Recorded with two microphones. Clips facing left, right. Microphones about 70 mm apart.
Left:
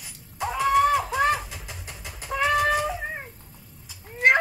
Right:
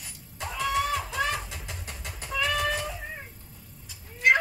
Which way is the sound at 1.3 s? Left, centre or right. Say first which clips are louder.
Left 5 dB; centre.